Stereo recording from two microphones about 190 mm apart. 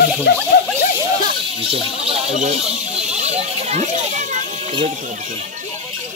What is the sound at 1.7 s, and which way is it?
Speech, 30° right (ahead or behind).